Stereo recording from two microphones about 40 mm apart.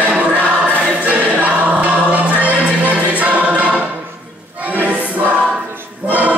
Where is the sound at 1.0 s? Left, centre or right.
Right.